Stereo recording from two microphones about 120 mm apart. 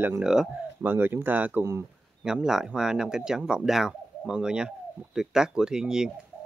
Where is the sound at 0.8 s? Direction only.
15° right (ahead or behind).